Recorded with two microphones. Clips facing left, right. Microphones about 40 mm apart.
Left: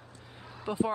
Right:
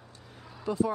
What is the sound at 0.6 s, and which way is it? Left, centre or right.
Speech, left.